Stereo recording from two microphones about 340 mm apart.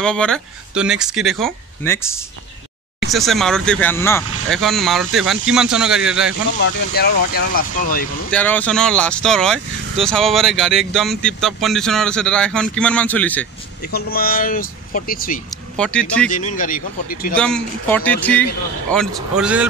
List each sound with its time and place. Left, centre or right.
0.0 s speech: centre
3.1 s speech: centre
6.6 s speech: left
8.3 s speech: centre
13.8 s speech: left
15.7 s speech: centre
16.3 s speech: left
17.4 s speech: centre